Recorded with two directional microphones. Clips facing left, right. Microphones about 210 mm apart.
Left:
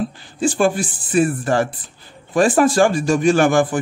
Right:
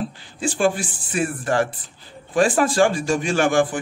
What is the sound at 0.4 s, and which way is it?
A man's voice, 40° left (ahead or behind).